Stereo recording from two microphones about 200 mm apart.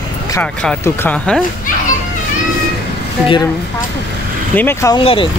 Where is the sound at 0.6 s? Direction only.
10° left (ahead or behind).